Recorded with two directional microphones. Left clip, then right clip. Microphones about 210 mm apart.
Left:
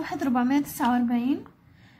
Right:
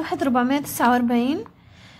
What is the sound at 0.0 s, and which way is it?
A woman's voice, 30° right (ahead or behind).